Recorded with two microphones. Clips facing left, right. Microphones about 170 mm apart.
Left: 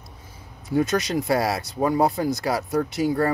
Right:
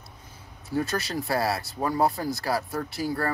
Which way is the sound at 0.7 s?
20° left (ahead or behind).